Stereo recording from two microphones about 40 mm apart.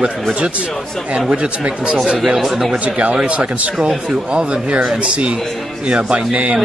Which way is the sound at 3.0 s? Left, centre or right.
Right.